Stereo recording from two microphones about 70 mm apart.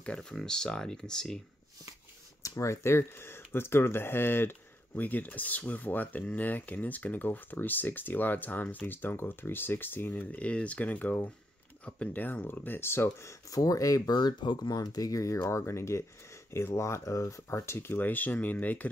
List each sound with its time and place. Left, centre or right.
0.0 s speech: centre
2.4 s speech: left
15.4 s speech: left